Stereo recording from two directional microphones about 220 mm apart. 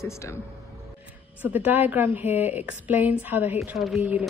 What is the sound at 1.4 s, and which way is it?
A woman's voice, 5° right (ahead or behind).